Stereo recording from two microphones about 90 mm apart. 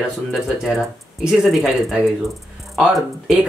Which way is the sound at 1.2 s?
5° right (ahead or behind).